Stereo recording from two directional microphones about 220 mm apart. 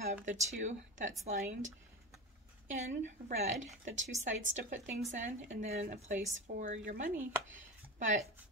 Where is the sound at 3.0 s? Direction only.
30° right (ahead or behind).